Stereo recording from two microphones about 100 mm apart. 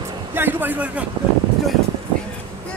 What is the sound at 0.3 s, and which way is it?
Speech, 20° right (ahead or behind).